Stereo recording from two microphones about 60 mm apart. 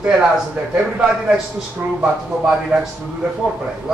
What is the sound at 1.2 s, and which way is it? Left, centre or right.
Speech, centre.